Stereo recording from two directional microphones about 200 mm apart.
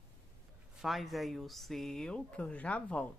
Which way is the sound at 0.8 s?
Centre (ahead or behind).